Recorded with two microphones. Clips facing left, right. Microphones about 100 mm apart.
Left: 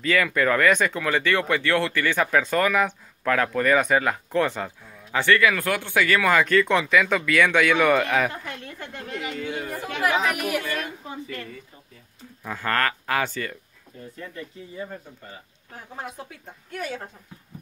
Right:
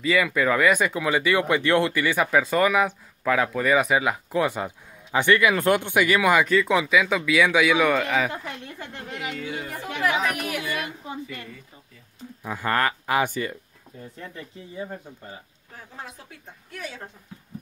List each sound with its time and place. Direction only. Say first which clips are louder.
0.0 s a man's voice: even; 5° right (ahead or behind)
8.3 s speech: right 1 dB; 15° right (ahead or behind)
10.2 s a man's voice: left 2 dB; 5° left (ahead or behind)
10.6 s speech: even; 10° right (ahead or behind)
12.4 s speech: right 1 dB; 15° right (ahead or behind)
16.7 s speech: left 5 dB; 50° left (ahead or behind)